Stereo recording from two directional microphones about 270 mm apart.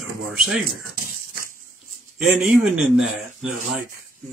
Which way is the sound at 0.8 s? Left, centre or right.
Right.